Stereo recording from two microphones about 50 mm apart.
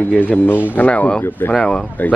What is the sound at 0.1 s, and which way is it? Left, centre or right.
Speech, left.